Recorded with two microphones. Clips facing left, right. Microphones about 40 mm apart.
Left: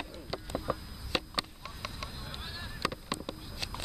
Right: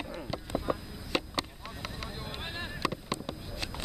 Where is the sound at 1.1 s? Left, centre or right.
Centre.